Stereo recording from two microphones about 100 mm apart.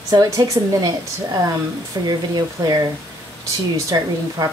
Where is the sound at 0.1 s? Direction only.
40° right (ahead or behind).